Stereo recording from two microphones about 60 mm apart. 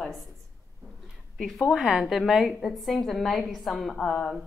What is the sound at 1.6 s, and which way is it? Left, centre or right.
A woman's voice, centre.